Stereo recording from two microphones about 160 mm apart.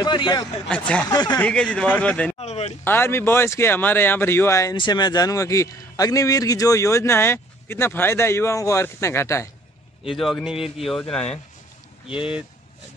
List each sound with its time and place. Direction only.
0.0 s a man's voice: 30° left (ahead or behind)
0.7 s speech: 5° left (ahead or behind)
1.1 s a man's voice: 25° left (ahead or behind)
1.4 s speech: 5° left (ahead or behind)
2.4 s speech: 40° left (ahead or behind)
2.8 s a man's voice: 15° left (ahead or behind)
10.0 s a man's voice: centre (ahead or behind)
12.1 s a man's voice: 5° right (ahead or behind)